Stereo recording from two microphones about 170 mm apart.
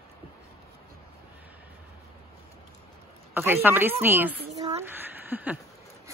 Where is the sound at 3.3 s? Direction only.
15° right (ahead or behind).